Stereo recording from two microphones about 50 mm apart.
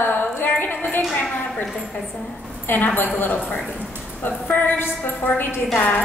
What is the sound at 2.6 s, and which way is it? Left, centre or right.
Speech, left.